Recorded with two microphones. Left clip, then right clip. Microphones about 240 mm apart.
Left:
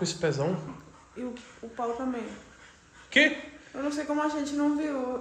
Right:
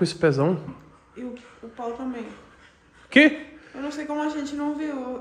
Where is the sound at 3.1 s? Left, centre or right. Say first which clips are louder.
Right 5 dB; right.